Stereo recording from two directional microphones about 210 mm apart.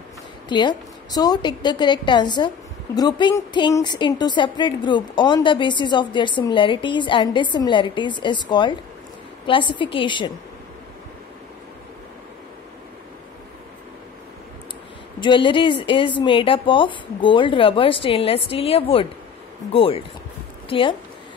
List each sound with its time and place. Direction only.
0.5 s a woman's voice: 20° left (ahead or behind)
15.1 s a woman's voice: 20° left (ahead or behind)